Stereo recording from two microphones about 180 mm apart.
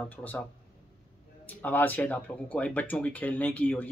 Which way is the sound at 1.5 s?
10° left (ahead or behind).